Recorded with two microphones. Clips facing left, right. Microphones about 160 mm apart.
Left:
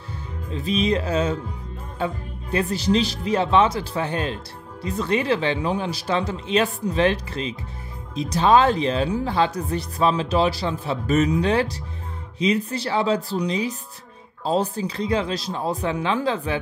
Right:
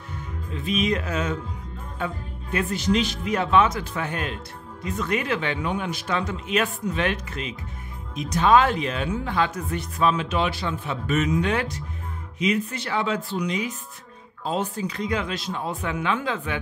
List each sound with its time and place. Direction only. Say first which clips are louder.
0.5 s speech: left 2 dB; 30° left (ahead or behind)